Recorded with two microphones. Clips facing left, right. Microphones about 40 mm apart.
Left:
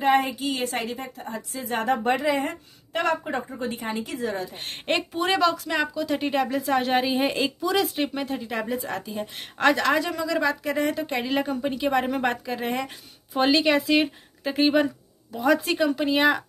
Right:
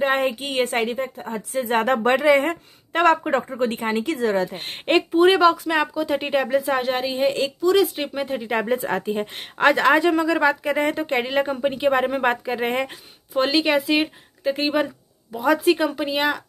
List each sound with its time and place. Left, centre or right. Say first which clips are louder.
0.1 s a woman's voice: even; right
0.9 s speech: right 6 dB; right
1.5 s a woman's voice: right 5 dB; right
2.0 s speech: right 6 dB; right
2.5 s a woman's voice: right 5 dB; right
4.6 s speech: right 6 dB; centre
6.8 s speech: right 1 dB; centre
8.3 s speech: right 6 dB; right
9.4 s speech: right 3 dB; centre
11.2 s speech: right 4 dB; centre
13.3 s speech: right 1 dB; centre